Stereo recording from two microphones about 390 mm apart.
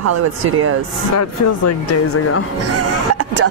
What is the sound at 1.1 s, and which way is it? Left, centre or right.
Speech, left.